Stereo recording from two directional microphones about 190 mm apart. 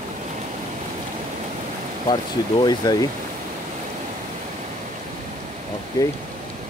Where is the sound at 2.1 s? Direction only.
20° left (ahead or behind).